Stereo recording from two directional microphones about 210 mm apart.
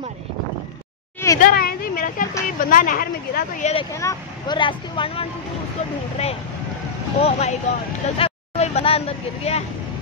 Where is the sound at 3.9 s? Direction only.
15° left (ahead or behind).